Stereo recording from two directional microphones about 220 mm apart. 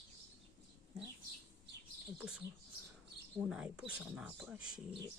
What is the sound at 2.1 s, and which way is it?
Speech, 5° right (ahead or behind).